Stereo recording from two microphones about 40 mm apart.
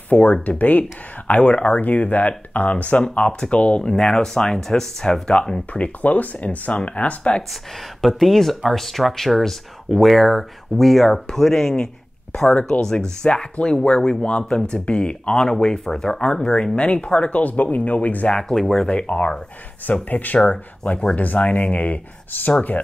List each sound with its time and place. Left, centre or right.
0.1 s speech: left
3.0 s speech: left
3.9 s speech: centre
5.7 s speech: left
8.2 s speech: centre
11.7 s a sound: left
12.5 s speech: left
12.8 s speech: centre
16.7 s speech: left
18.3 s speech: centre
18.9 s speech: left
19.9 s speech: left
20.4 s speech: left